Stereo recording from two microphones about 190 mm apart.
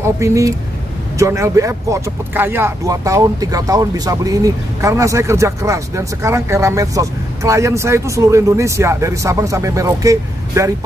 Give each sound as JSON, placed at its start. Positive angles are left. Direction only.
{"t": 0.0, "sound": "speech", "side_deg": -15}